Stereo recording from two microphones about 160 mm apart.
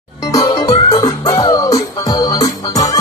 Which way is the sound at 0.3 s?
20° left (ahead or behind).